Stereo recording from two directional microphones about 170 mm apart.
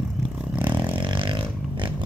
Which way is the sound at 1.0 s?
30° right (ahead or behind).